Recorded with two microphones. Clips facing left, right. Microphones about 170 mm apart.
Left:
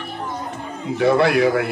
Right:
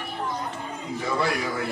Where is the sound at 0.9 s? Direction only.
70° left (ahead or behind).